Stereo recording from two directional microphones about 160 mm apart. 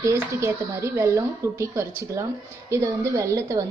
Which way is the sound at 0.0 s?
20° right (ahead or behind).